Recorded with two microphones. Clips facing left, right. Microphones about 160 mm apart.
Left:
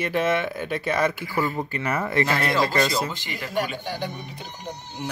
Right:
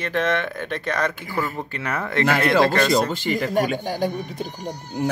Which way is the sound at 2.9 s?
50° right (ahead or behind).